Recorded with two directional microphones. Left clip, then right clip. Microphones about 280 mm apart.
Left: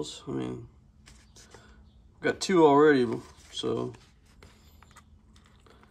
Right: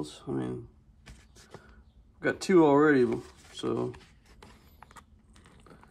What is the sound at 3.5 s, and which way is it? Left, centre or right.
Speech, centre.